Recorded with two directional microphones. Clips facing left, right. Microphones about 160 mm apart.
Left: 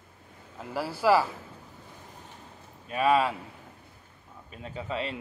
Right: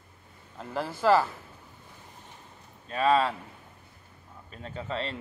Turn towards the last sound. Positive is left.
turn(degrees=10)  # may be behind; listen again after turning